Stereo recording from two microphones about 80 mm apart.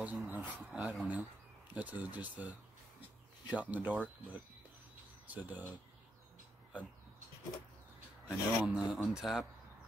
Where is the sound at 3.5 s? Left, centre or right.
Centre.